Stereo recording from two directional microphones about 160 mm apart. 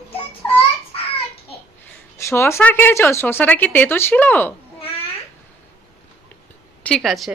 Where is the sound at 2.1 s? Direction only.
15° left (ahead or behind).